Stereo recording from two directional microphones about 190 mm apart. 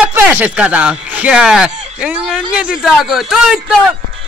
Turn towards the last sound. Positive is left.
turn(degrees=0)  # may be behind; listen again after turning